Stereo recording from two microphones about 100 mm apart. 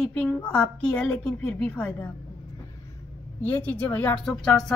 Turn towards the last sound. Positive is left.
turn(degrees=5)  # may be behind; listen again after turning